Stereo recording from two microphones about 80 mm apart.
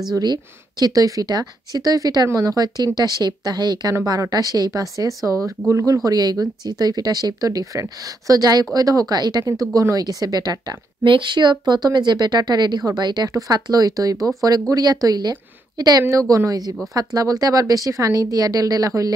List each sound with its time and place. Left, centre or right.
0.1 s a woman's voice: right
6.0 s a woman's voice: right
11.1 s a woman's voice: right
16.0 s a woman's voice: right